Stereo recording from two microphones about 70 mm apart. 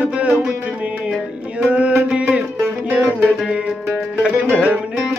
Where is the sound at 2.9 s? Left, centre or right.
Centre.